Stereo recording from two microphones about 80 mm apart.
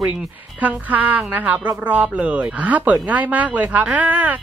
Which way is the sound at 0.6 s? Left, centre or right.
Right.